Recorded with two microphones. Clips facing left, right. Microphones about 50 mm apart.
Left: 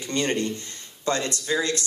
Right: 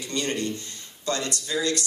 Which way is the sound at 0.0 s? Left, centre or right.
Left.